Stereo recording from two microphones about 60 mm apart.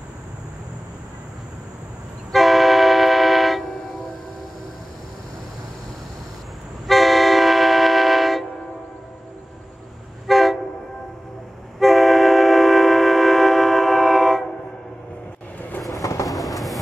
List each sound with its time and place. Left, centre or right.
2.3 s train: centre
6.9 s vehicle: centre
10.2 s vehicle: centre
11.8 s train: centre
16.0 s vehicle: left
16.3 s train: centre